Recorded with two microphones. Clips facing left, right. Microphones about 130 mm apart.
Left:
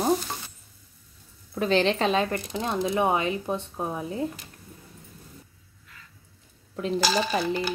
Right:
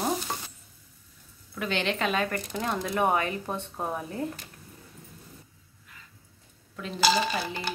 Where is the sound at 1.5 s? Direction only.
35° left (ahead or behind); by 4.2 s 15° left (ahead or behind).